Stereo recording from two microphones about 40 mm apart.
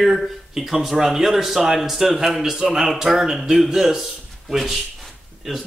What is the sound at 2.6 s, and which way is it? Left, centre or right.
Speech, right.